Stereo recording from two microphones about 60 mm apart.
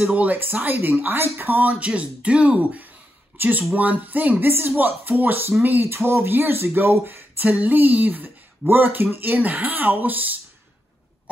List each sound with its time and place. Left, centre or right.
0.0 s speech: right
4.5 s speech: right
7.4 s speech: right